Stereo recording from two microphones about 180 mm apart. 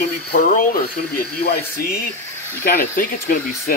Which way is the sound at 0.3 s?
50° left (ahead or behind).